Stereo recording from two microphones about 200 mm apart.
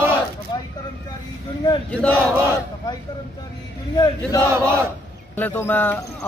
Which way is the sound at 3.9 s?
20° left (ahead or behind).